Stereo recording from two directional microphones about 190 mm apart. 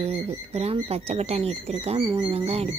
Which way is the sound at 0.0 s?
35° right (ahead or behind).